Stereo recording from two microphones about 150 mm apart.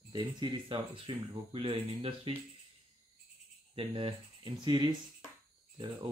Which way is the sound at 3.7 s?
35° right (ahead or behind).